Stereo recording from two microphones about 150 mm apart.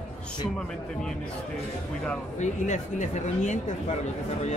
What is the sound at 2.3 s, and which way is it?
Speech, 55° left (ahead or behind).